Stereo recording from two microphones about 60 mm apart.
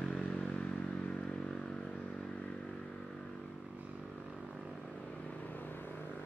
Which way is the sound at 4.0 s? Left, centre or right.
Centre.